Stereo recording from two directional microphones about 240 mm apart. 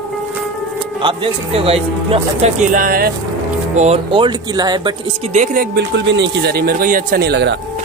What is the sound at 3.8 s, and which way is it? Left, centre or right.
Speech, right.